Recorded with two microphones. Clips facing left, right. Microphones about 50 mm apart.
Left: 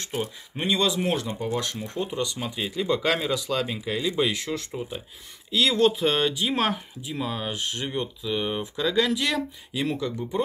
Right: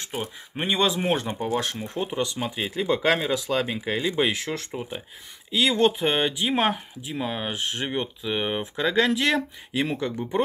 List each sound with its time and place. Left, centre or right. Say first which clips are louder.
0.0 s speech: left 2 dB; centre; by 1.8 s right
2.0 s speech: right 2 dB; centre; by 10.1 s right